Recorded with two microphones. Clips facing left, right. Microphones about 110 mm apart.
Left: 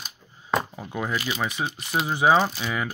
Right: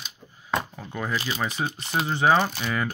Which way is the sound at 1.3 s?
Centre (ahead or behind).